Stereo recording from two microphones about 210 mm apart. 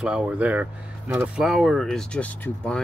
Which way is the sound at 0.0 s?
5° right (ahead or behind).